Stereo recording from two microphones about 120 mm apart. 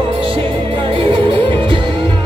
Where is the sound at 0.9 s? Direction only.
45° right (ahead or behind).